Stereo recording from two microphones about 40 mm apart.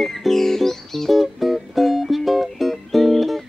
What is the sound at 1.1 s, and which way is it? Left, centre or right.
Music, centre.